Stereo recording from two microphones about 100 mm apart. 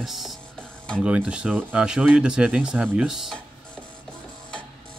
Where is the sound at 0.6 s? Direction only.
10° left (ahead or behind).